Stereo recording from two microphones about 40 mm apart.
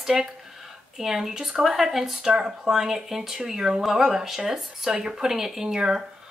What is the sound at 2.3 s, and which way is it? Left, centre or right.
Speech, right.